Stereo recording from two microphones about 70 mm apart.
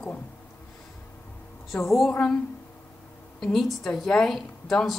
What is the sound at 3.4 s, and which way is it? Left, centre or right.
Speech, centre.